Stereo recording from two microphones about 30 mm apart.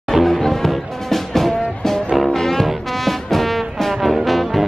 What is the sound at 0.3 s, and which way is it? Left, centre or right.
Music, centre.